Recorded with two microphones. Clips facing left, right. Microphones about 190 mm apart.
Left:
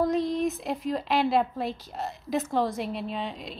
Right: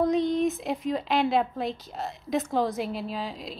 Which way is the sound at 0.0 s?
Centre (ahead or behind).